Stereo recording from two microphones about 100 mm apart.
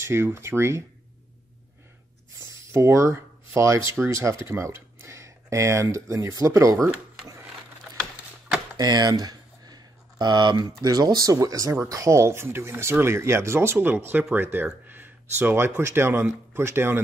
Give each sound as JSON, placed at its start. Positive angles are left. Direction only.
{"t": 0.0, "sound": "speech", "side_deg": -25}
{"t": 2.6, "sound": "speech", "side_deg": -30}
{"t": 8.7, "sound": "a sound", "side_deg": -40}
{"t": 10.8, "sound": "speech", "side_deg": -40}